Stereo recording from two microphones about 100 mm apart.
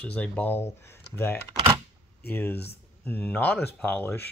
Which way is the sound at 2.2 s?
20° left (ahead or behind).